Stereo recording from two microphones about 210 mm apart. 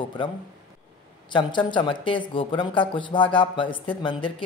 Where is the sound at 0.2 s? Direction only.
25° left (ahead or behind).